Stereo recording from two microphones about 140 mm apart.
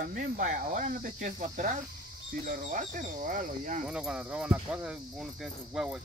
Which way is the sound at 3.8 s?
5° right (ahead or behind).